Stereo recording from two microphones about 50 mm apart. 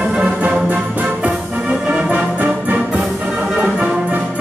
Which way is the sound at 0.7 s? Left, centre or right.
Right.